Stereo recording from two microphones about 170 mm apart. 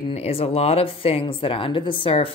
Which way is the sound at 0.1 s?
35° left (ahead or behind).